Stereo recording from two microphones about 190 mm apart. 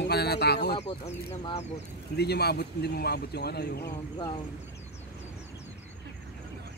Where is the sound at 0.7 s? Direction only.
35° left (ahead or behind).